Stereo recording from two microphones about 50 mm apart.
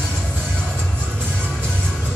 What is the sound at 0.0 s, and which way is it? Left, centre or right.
Music, left.